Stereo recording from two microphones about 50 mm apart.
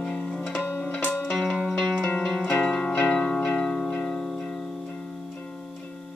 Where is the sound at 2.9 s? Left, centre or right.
Left.